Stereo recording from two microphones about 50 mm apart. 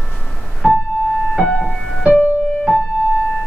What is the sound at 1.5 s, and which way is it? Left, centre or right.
Music, left.